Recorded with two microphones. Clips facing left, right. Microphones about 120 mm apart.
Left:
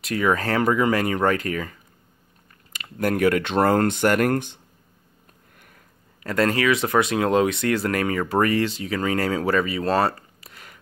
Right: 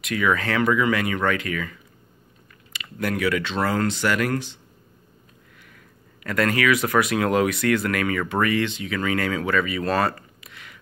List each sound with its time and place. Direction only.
0.0 s speech: 35° left (ahead or behind)
6.2 s speech: 30° left (ahead or behind)